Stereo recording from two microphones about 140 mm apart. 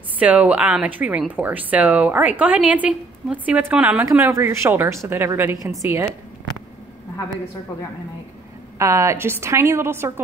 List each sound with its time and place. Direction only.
0.2 s speech: 10° right (ahead or behind)
8.7 s a woman's voice: 20° right (ahead or behind)